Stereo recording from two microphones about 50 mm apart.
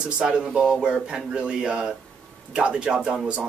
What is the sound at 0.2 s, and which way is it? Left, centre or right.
Speech, centre.